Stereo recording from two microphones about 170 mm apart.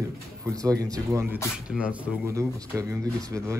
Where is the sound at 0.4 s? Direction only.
20° right (ahead or behind).